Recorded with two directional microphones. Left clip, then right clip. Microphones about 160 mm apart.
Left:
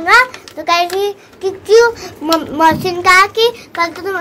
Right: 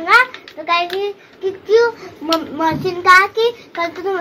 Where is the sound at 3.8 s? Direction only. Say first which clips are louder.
Left 3 dB; 10° right (ahead or behind).